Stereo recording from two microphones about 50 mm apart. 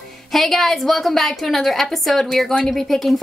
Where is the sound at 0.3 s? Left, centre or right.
Centre.